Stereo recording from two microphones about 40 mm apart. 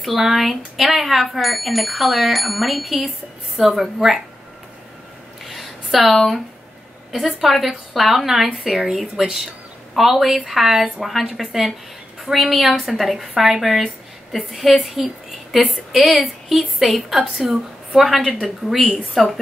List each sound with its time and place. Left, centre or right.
0.0 s speech: centre
5.4 s a sound: centre
7.1 s a woman's voice: centre
17.2 s a woman's voice: centre
17.9 s a woman's voice: centre
19.2 s speech: centre